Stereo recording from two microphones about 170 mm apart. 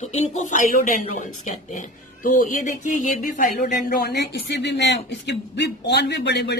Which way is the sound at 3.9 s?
65° left (ahead or behind).